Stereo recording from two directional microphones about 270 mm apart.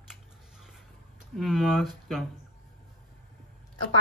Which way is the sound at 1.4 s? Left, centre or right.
Centre.